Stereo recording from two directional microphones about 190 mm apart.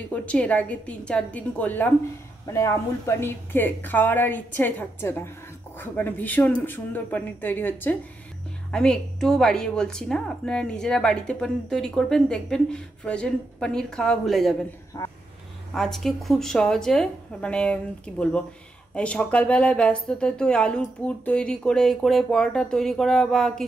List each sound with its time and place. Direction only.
0.1 s a woman's voice: 5° left (ahead or behind)
15.0 s speech: 20° left (ahead or behind)
15.7 s a woman's voice: centre (ahead or behind)